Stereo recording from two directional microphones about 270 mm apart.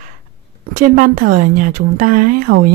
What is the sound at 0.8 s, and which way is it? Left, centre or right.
A woman's voice, right.